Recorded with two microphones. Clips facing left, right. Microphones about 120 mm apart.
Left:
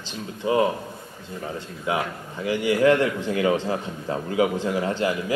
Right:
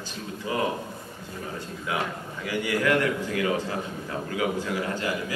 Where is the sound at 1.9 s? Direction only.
25° left (ahead or behind).